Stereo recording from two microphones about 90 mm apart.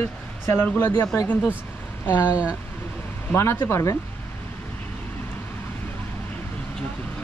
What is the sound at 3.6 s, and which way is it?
Speech, 30° left (ahead or behind).